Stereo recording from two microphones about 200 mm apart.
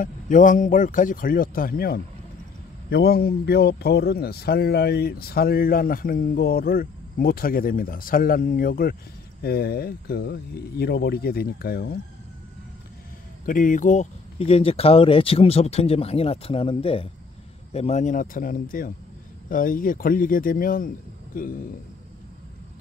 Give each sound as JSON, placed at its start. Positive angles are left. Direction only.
{"t": 0.0, "sound": "a man's voice", "side_deg": 40}
{"t": 13.5, "sound": "speech", "side_deg": 40}